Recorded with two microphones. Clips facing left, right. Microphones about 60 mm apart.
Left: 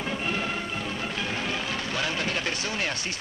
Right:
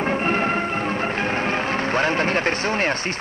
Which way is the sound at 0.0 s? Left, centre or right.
Right.